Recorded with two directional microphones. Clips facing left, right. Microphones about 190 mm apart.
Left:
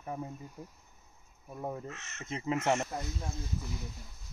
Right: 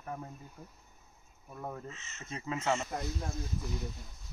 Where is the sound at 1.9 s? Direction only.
75° left (ahead or behind).